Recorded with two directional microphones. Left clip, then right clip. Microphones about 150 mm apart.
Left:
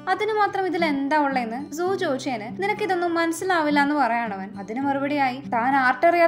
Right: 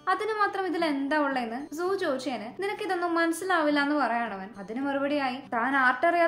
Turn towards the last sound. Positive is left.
turn(degrees=30)  # may be behind; listen again after turning